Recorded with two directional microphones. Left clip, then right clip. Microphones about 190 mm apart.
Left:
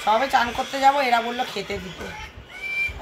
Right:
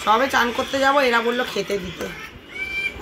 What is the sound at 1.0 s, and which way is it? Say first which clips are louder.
Speech: right 3 dB; 15° left (ahead or behind).